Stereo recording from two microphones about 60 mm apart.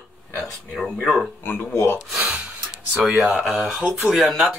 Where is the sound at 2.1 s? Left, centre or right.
Centre.